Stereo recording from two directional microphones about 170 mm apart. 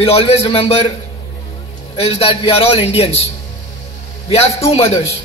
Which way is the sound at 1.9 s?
35° left (ahead or behind).